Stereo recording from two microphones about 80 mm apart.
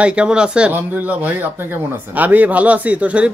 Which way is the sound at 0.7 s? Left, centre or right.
Right.